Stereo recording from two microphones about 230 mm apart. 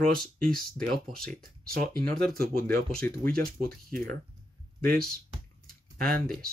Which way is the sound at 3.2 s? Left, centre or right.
Right.